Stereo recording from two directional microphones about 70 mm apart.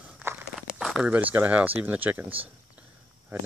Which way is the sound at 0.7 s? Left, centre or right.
Centre.